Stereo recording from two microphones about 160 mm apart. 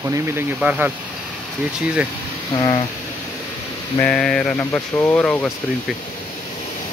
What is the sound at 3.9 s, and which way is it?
Speech, 5° left (ahead or behind).